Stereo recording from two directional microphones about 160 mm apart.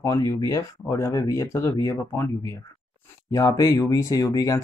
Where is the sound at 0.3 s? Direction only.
20° left (ahead or behind).